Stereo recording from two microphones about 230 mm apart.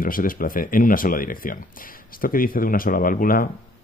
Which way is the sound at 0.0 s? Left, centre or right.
Left.